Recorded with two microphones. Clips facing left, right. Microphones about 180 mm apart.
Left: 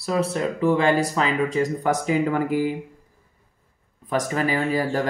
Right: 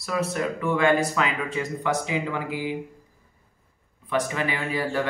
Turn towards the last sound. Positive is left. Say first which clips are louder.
# left 4 dB
turn(degrees=40)  # may be behind; listen again after turning